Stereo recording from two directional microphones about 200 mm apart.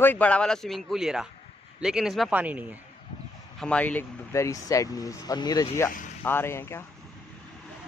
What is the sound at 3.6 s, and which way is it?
Speech, 5° left (ahead or behind).